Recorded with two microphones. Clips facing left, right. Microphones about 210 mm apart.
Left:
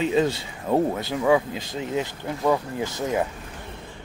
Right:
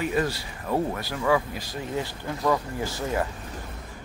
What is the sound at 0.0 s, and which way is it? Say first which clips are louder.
Speech: left 4 dB; 20° left (ahead or behind).